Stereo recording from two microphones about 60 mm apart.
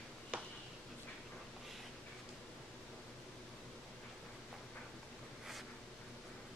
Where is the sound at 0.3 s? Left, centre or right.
Centre.